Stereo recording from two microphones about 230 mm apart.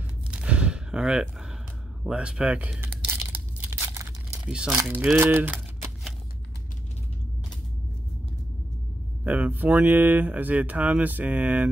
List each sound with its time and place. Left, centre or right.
0.3 s a sound: centre
2.0 s tearing: centre
9.2 s speech: centre